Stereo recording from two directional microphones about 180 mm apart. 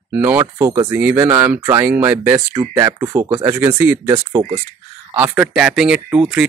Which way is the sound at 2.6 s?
25° right (ahead or behind).